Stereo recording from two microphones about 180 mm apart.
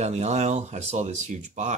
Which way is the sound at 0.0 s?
40° right (ahead or behind).